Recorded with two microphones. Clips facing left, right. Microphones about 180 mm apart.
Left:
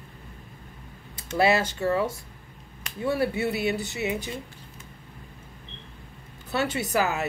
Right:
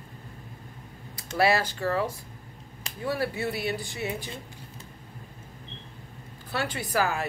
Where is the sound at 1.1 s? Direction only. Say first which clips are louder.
Left 2 dB; 25° left (ahead or behind).